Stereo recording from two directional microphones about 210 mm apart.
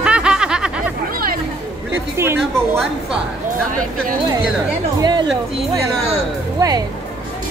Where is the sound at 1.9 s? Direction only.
10° right (ahead or behind).